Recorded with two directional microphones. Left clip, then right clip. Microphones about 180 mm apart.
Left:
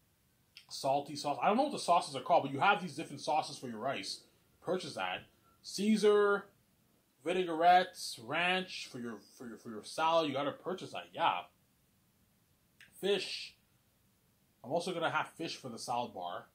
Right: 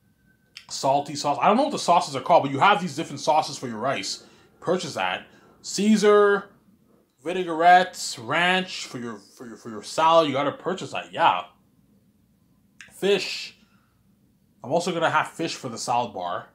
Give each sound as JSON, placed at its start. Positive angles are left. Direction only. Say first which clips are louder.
{"t": 0.6, "sound": "speech", "louder": "right 11 dB", "side_deg": -25}
{"t": 12.7, "sound": "a sound", "louder": "right 11 dB", "side_deg": -25}
{"t": 14.6, "sound": "speech", "louder": "right 12 dB", "side_deg": -25}